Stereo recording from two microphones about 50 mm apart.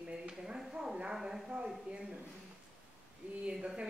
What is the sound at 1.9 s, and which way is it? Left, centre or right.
Speech, right.